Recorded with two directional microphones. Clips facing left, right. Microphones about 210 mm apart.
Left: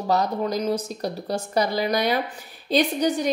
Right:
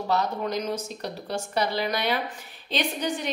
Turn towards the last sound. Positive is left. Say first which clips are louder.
# left 7 dB
turn(degrees=40)  # may be behind; listen again after turning